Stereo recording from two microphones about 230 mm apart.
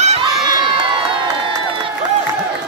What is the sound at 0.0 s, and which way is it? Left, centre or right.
Crowd, right.